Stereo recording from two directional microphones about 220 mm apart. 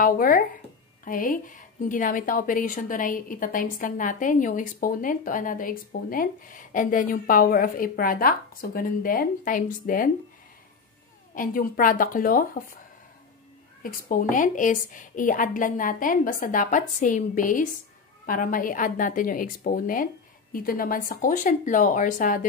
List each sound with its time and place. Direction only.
0.0 s a woman's voice: 40° left (ahead or behind)
11.3 s a woman's voice: 40° left (ahead or behind)
13.8 s a woman's voice: 40° left (ahead or behind)